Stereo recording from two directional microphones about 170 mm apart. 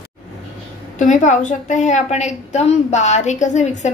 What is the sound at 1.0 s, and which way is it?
A woman's voice, 45° left (ahead or behind).